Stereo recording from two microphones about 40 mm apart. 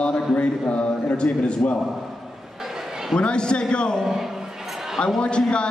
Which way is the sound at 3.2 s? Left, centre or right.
Left.